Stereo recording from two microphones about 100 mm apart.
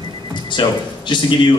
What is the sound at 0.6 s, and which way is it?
Speech, 50° left (ahead or behind).